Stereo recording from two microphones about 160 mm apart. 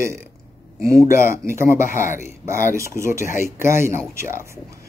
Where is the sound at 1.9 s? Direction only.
55° left (ahead or behind).